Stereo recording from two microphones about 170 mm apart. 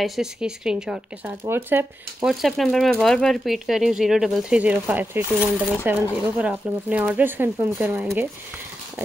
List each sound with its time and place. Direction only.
0.0 s speech: centre (ahead or behind)
2.4 s speech: centre (ahead or behind)